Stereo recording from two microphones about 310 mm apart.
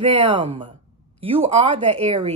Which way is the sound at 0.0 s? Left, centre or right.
Centre.